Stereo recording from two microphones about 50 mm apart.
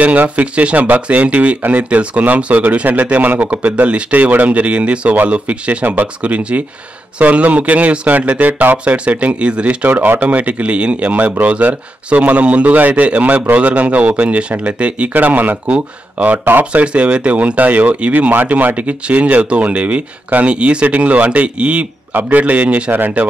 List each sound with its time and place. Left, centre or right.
0.0 s speech: right
9.8 s speech: right